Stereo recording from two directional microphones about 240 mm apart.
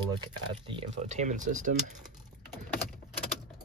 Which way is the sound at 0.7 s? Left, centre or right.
Right.